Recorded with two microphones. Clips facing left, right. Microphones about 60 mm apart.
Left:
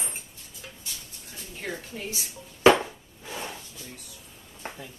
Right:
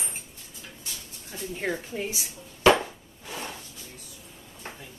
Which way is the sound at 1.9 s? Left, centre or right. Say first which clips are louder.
Right 3 dB; centre.